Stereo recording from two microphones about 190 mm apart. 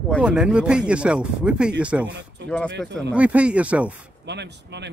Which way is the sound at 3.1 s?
5° right (ahead or behind).